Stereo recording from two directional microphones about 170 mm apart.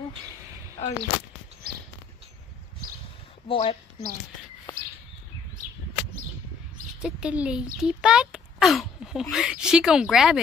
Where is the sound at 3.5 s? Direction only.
30° left (ahead or behind).